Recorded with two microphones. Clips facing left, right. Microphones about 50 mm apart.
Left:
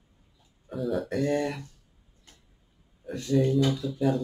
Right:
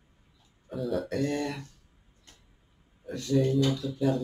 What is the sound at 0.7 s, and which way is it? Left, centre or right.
Speech, centre.